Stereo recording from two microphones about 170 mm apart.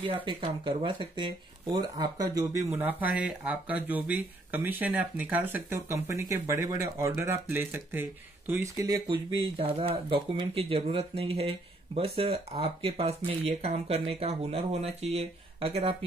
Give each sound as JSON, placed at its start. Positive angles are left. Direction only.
{"t": 0.1, "sound": "speech", "side_deg": -30}
{"t": 9.6, "sound": "speech", "side_deg": -35}